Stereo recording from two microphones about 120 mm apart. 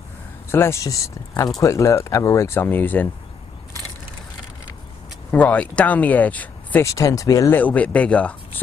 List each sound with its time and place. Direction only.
0.5 s speech: 20° left (ahead or behind)
5.3 s speech: 10° left (ahead or behind)
6.9 s speech: 25° left (ahead or behind)
7.5 s speech: 10° left (ahead or behind)